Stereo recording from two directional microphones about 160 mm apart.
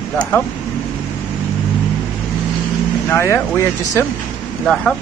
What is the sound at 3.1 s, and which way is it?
Speech, 15° left (ahead or behind).